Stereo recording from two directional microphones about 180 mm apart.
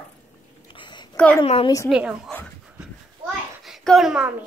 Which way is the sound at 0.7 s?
25° left (ahead or behind).